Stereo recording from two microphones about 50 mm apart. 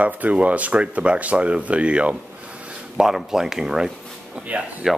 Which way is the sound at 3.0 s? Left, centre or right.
Centre.